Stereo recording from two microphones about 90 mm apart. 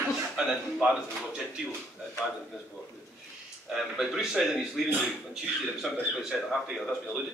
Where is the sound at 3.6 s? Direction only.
Centre (ahead or behind).